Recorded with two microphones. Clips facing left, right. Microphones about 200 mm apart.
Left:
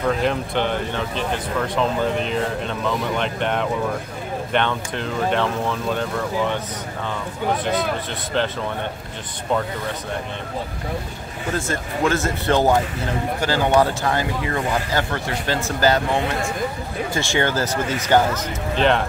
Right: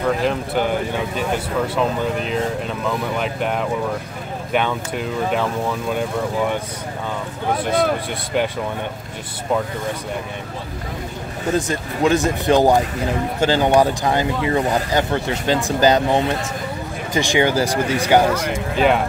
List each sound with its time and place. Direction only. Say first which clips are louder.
0.2 s speech: right 1 dB; 5° right (ahead or behind)
11.5 s speech: right 3 dB; 15° right (ahead or behind)